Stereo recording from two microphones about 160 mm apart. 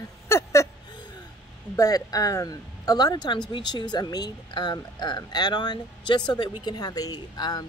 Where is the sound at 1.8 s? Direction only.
20° left (ahead or behind).